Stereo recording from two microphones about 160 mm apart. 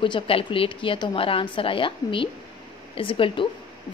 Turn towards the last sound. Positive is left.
turn(degrees=35)  # may be behind; listen again after turning